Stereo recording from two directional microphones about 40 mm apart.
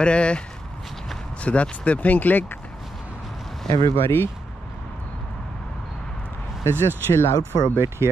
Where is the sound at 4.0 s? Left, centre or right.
Left.